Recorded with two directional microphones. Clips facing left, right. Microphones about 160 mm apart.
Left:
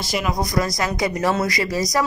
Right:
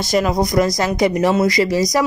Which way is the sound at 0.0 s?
45° right (ahead or behind).